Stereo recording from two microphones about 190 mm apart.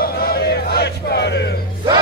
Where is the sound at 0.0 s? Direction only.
55° left (ahead or behind).